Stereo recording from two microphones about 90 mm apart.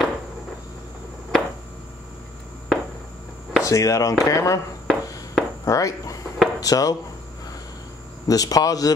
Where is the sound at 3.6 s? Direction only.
35° left (ahead or behind).